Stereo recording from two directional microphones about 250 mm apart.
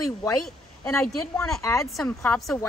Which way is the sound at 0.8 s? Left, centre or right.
Centre.